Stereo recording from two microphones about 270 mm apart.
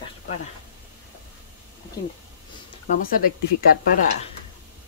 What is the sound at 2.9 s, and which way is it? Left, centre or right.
Speech, left.